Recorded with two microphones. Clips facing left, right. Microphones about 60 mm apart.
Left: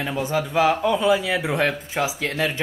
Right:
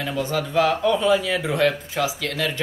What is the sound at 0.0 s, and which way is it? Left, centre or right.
A man's voice, left.